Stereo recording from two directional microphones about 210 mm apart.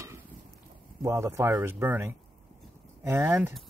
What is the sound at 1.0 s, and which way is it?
Speech, 15° right (ahead or behind).